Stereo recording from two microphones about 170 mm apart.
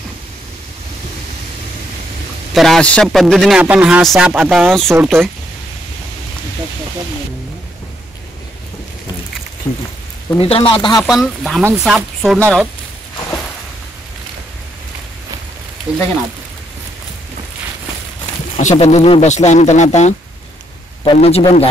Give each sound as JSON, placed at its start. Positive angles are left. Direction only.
{"t": 2.5, "sound": "a man's voice", "side_deg": 0}
{"t": 9.6, "sound": "speech", "side_deg": 10}
{"t": 10.4, "sound": "a man's voice", "side_deg": 35}
{"t": 11.0, "sound": "a man's voice", "side_deg": 0}
{"t": 12.4, "sound": "speech", "side_deg": -15}
{"t": 15.9, "sound": "a man's voice", "side_deg": -5}
{"t": 18.6, "sound": "speech", "side_deg": 45}
{"t": 21.0, "sound": "a man's voice", "side_deg": 30}